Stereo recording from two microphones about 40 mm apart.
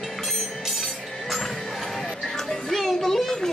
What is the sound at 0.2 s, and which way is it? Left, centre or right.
Music, centre.